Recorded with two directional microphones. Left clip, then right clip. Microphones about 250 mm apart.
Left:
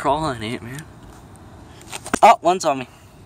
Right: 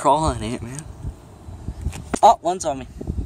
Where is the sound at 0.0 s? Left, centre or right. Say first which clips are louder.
Right 3 dB; centre.